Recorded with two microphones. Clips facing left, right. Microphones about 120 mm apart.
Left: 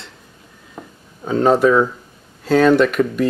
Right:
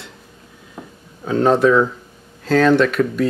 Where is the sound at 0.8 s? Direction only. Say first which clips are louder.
Even; centre (ahead or behind).